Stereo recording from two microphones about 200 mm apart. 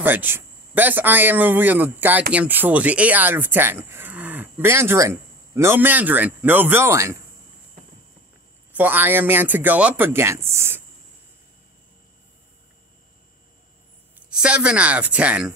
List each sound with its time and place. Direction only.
0.0 s speech: 10° right (ahead or behind)
8.7 s speech: 10° right (ahead or behind)
14.3 s speech: 5° right (ahead or behind)